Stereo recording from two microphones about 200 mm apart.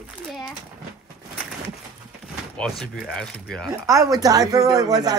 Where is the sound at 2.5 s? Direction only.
Centre (ahead or behind).